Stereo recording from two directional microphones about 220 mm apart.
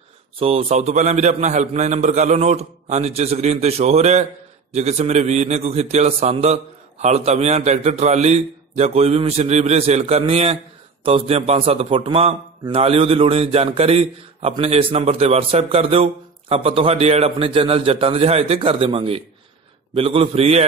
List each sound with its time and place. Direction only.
0.4 s a man's voice: 25° right (ahead or behind)